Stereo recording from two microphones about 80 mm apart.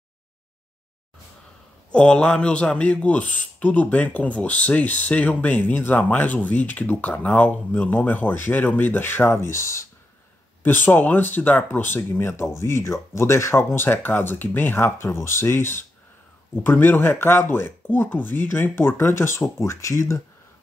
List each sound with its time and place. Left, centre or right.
1.9 s a man's voice: centre; by 9.8 s left
10.6 s a man's voice: left